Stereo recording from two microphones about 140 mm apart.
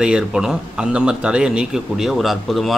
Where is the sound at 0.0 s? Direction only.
5° right (ahead or behind).